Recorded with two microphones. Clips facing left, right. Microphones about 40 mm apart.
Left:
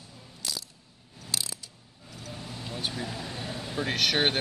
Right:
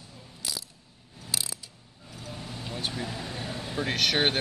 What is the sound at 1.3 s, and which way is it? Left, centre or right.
Ratchet, centre.